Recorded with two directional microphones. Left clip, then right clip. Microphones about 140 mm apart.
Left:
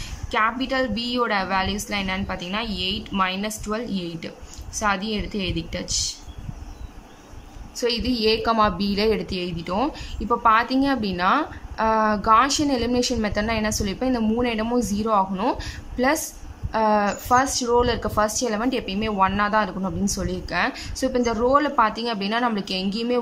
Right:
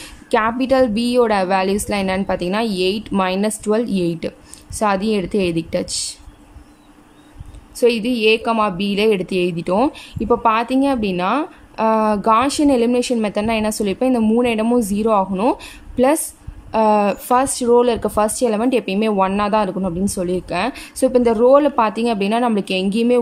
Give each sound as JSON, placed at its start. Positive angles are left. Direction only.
{"t": 0.3, "sound": "a woman's voice", "side_deg": -35}
{"t": 7.7, "sound": "a woman's voice", "side_deg": -25}